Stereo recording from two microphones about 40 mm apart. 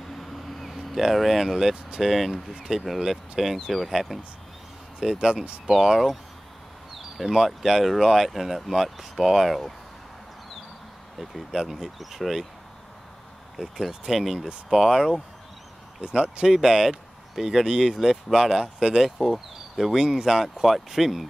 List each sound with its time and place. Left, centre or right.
0.1 s a sound: centre
2.0 s speech: centre
5.2 s speech: centre
5.7 s speech: centre
11.1 s speech: centre
13.6 s speech: centre
16.0 s speech: right
16.5 s speech: centre
19.0 s speech: centre